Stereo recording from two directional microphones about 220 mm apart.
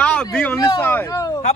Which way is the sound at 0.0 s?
5° left (ahead or behind).